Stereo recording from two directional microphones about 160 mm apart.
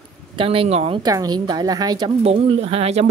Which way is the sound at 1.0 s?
25° right (ahead or behind).